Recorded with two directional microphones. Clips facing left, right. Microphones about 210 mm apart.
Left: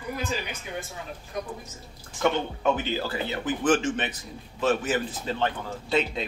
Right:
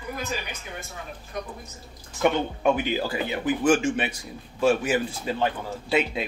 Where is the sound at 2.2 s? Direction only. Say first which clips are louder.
Right 2 dB; 10° right (ahead or behind).